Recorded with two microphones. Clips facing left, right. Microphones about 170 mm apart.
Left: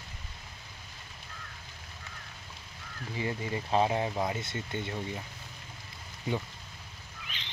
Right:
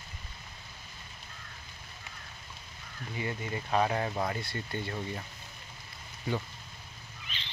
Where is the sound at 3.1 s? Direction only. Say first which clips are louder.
Left 2 dB; 25° left (ahead or behind).